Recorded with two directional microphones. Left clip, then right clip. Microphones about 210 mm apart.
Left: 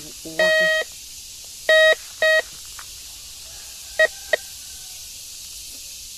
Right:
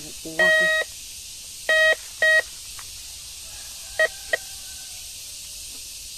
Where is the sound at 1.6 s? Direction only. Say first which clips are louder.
Left 4 dB; 35° left (ahead or behind).